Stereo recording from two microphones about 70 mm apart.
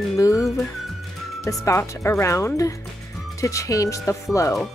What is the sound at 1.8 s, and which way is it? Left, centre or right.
Speech, left.